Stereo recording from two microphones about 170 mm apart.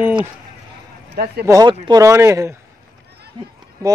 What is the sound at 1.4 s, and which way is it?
Speech, 20° right (ahead or behind).